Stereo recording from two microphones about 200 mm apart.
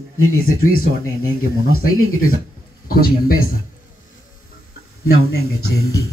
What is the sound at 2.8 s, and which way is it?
Speech, 45° left (ahead or behind).